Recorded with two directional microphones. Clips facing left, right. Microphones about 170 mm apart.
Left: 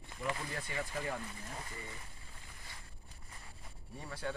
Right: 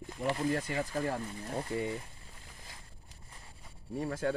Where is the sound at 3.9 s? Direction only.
50° right (ahead or behind).